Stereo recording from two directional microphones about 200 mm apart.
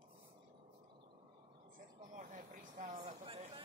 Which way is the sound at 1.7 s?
40° right (ahead or behind).